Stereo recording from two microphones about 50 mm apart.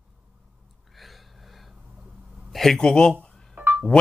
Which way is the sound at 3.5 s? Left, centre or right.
Right.